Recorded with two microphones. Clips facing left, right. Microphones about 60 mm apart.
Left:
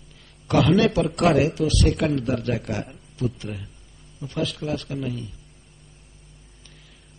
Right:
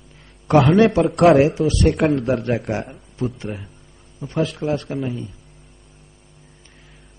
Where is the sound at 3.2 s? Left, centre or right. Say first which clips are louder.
Right 3 dB; right.